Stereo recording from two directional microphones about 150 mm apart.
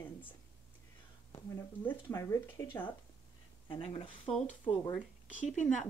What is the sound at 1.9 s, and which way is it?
Speech, 15° left (ahead or behind).